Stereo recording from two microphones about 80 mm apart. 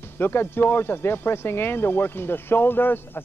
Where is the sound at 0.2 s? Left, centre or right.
Left.